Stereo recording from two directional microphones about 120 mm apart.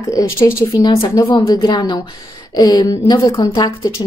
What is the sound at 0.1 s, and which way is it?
Speech, 25° left (ahead or behind).